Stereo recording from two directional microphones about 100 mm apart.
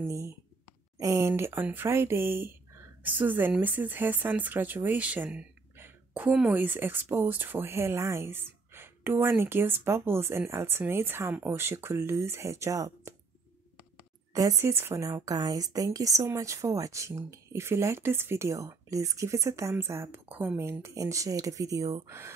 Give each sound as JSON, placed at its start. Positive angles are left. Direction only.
{"t": 0.0, "sound": "a woman's voice", "side_deg": -30}
{"t": 5.8, "sound": "a sound", "side_deg": -20}
{"t": 6.5, "sound": "speech", "side_deg": -20}
{"t": 14.3, "sound": "a woman's voice", "side_deg": -35}